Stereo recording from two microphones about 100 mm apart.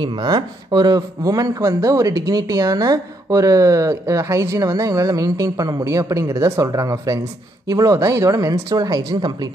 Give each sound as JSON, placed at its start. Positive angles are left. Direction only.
{"t": 0.0, "sound": "speech", "side_deg": -45}